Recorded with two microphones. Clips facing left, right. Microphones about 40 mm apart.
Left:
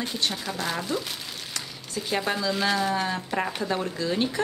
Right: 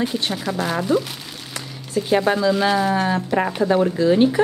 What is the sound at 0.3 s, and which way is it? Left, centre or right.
Speech, centre.